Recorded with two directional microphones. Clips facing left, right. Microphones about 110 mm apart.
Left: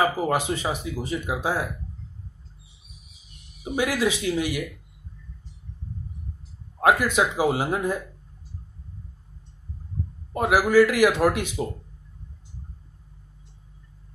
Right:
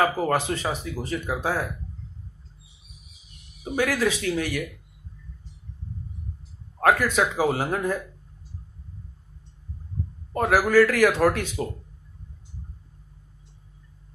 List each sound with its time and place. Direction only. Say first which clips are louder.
0.0 s speech: even; 10° left (ahead or behind)
3.6 s speech: even; 15° left (ahead or behind)
6.8 s speech: left 1 dB; 15° left (ahead or behind)
10.3 s speech: even; 10° left (ahead or behind)